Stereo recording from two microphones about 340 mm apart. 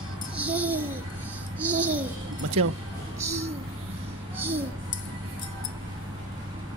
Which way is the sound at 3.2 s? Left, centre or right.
Centre.